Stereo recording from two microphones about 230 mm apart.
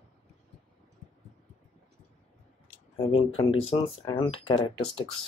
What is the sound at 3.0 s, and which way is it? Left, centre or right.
Speech, left.